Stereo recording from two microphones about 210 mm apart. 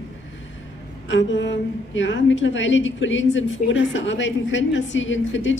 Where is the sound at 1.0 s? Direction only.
60° left (ahead or behind).